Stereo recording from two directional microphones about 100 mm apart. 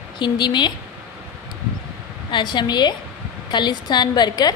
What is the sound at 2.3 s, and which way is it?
Speech, 50° left (ahead or behind).